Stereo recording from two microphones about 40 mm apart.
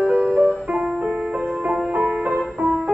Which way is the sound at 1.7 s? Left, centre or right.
Right.